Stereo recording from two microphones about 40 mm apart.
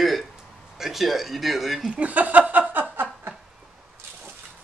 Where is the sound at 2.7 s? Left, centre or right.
Right.